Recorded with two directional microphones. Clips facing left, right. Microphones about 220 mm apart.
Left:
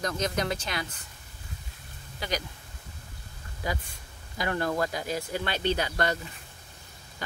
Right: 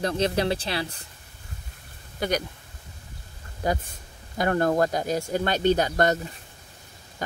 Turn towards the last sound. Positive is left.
turn(degrees=-45)  # may be behind; listen again after turning